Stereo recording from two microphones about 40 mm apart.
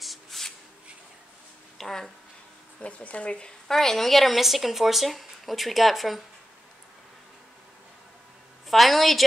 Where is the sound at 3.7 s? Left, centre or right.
Centre.